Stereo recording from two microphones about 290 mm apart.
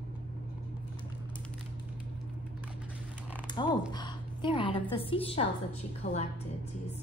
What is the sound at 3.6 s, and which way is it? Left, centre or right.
A woman's voice, centre.